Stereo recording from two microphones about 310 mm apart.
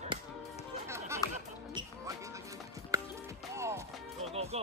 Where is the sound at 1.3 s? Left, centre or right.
Centre.